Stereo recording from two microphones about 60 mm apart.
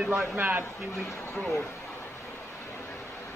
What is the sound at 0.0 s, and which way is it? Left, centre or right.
Speech, centre.